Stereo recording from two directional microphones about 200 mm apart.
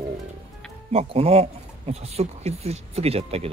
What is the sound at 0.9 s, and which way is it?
Speech, 30° right (ahead or behind).